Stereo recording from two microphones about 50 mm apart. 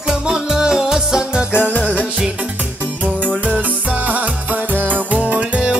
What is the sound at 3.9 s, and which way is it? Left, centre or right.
Music, right.